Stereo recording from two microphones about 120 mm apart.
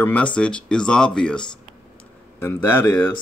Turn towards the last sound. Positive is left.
turn(degrees=20)  # may be behind; listen again after turning